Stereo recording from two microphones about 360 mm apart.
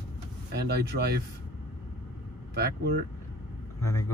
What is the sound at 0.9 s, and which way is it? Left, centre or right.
Speech, right.